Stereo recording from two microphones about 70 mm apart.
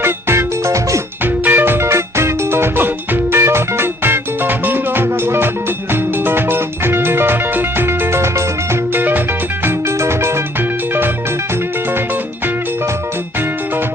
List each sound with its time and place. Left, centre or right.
0.0 s music: right
1.2 s music: right